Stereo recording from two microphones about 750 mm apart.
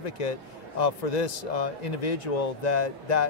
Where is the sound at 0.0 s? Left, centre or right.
Left.